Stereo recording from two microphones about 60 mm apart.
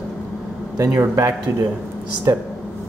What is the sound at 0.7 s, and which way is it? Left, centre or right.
A man's voice, right.